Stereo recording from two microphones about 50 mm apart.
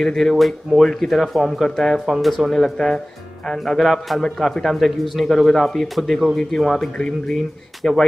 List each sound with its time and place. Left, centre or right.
0.0 s speech: centre
7.0 s speech: centre
7.3 s speech: centre